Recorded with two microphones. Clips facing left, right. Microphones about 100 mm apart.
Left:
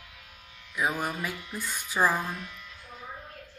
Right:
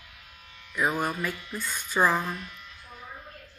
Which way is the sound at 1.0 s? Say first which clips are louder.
Right 3 dB; 15° left (ahead or behind).